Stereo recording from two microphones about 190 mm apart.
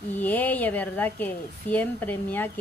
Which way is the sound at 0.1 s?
10° left (ahead or behind).